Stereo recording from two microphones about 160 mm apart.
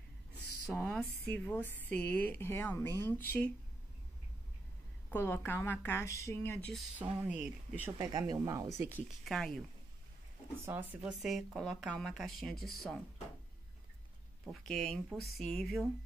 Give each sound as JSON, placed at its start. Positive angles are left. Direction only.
{"t": 0.7, "sound": "speech", "side_deg": 5}
{"t": 5.1, "sound": "speech", "side_deg": 15}
{"t": 7.0, "sound": "speech", "side_deg": -10}
{"t": 8.0, "sound": "speech", "side_deg": -25}
{"t": 9.2, "sound": "speech", "side_deg": 5}
{"t": 10.6, "sound": "speech", "side_deg": -15}
{"t": 14.5, "sound": "speech", "side_deg": 0}